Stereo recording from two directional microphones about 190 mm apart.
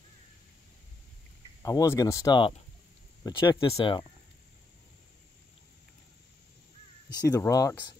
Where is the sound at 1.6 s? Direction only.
15° left (ahead or behind).